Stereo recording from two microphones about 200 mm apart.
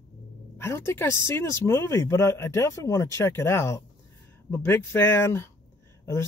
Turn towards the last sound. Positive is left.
turn(degrees=15)  # may be behind; listen again after turning